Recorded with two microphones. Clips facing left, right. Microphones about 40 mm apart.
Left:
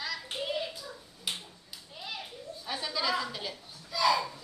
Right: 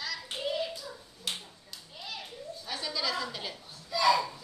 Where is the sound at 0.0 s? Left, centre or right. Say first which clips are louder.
Even; centre.